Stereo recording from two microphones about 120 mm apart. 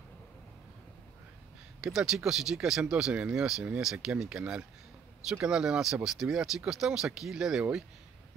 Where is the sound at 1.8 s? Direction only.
5° right (ahead or behind).